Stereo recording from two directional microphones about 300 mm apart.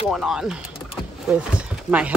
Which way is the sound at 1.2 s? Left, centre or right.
Centre.